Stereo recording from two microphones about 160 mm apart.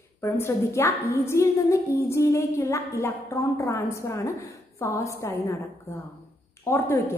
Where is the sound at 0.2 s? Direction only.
15° left (ahead or behind).